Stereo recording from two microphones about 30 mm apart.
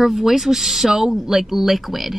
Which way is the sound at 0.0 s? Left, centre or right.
Centre.